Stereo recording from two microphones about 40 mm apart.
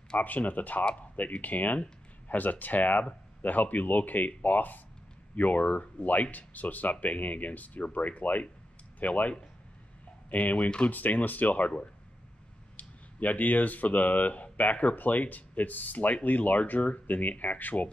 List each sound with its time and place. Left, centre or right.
0.2 s speech: left
10.3 s speech: left
10.9 s speech: left